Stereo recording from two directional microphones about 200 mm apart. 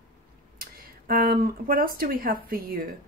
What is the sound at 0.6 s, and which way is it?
Speech, 45° right (ahead or behind).